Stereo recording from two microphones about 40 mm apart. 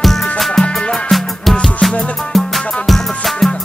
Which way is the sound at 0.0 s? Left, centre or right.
Centre.